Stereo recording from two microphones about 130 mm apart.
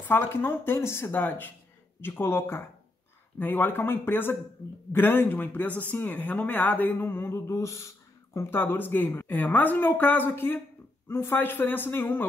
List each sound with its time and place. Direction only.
0.1 s speech: 15° left (ahead or behind)